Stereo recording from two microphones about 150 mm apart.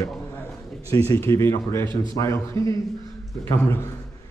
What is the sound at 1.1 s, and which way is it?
Speech, 20° left (ahead or behind).